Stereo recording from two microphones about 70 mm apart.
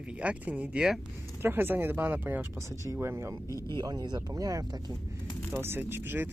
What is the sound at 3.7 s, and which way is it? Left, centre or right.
Speech, right.